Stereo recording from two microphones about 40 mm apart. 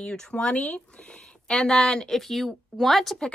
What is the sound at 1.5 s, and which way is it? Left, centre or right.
Speech, centre.